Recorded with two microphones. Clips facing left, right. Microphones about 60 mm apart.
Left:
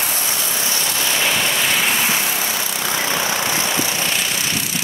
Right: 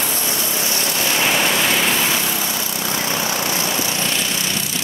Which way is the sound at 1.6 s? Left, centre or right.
Centre.